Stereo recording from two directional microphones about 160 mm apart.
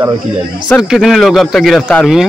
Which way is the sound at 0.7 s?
Centre (ahead or behind).